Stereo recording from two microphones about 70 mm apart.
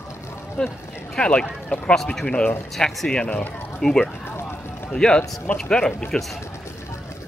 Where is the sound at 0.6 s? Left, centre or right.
Centre.